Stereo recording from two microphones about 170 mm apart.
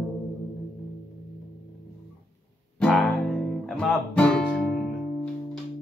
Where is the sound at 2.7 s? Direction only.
5° left (ahead or behind).